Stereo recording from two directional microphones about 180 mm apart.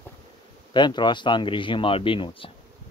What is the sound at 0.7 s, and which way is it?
Speech, 25° left (ahead or behind).